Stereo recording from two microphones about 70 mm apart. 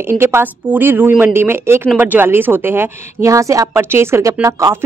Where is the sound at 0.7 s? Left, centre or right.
Right.